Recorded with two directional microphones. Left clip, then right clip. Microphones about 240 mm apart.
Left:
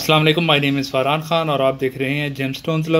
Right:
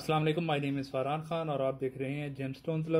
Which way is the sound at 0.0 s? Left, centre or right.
Centre.